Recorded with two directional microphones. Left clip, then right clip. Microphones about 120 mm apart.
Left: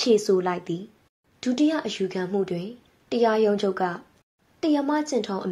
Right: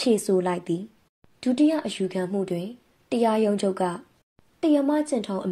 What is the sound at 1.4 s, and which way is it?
A woman's voice, 40° right (ahead or behind).